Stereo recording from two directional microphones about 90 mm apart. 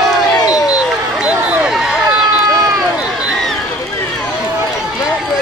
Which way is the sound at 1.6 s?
5° right (ahead or behind).